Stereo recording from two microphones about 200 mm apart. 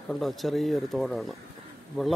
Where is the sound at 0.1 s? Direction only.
Centre (ahead or behind).